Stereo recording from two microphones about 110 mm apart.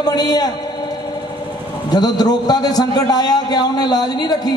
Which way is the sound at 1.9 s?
40° left (ahead or behind).